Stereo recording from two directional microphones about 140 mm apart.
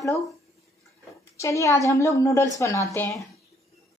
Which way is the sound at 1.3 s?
20° left (ahead or behind).